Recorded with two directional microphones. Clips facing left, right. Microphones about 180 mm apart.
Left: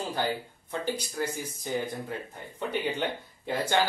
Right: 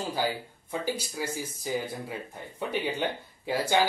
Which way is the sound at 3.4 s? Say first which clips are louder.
Right 1 dB; 10° right (ahead or behind).